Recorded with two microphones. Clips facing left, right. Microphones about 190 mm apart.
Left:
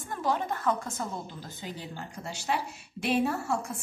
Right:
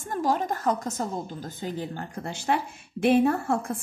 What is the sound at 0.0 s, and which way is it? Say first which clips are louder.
A woman's voice: right 4 dB; 45° right (ahead or behind).